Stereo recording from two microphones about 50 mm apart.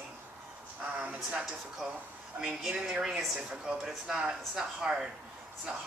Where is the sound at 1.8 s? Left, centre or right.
Centre.